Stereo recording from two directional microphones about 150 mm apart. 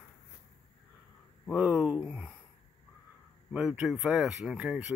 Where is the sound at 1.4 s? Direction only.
10° right (ahead or behind).